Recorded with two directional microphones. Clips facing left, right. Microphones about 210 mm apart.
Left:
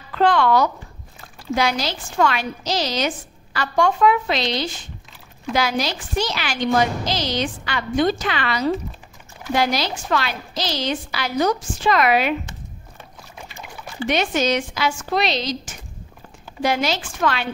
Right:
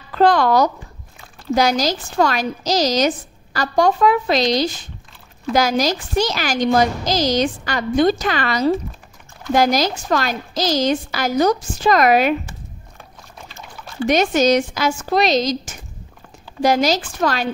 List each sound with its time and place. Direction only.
0.1 s a woman's voice: 40° right (ahead or behind)
13.4 s trickle: 15° left (ahead or behind)
14.0 s a woman's voice: 40° right (ahead or behind)